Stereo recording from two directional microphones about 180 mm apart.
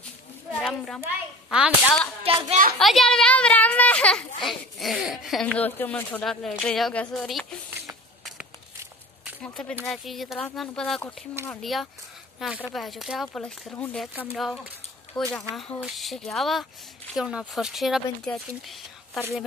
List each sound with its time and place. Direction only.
0.5 s a child's voice: centre (ahead or behind)
2.3 s a child's voice: 30° right (ahead or behind)
2.8 s a child's voice: centre (ahead or behind)
9.4 s a child's voice: 5° left (ahead or behind)